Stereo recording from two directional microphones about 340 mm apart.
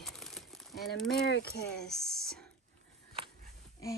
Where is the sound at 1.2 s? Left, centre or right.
Left.